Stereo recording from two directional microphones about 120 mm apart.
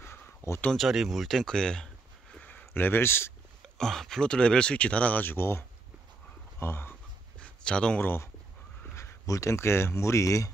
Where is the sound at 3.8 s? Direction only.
5° left (ahead or behind); by 6.9 s 20° left (ahead or behind).